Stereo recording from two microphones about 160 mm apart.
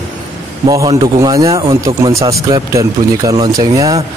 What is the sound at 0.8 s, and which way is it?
Speech, 25° right (ahead or behind).